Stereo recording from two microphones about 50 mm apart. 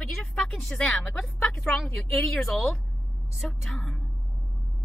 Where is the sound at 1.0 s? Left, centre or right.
Centre.